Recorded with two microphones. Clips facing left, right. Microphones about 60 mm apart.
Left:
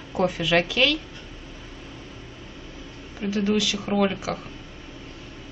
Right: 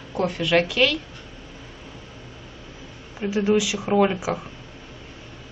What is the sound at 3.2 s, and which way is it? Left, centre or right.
A woman's voice, centre.